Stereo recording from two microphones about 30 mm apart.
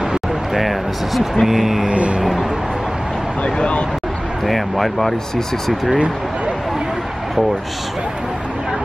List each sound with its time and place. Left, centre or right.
0.6 s speech: centre
3.4 s speech: left
4.5 s speech: centre